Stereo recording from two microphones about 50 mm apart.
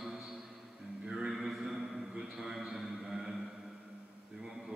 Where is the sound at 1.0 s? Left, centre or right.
Centre.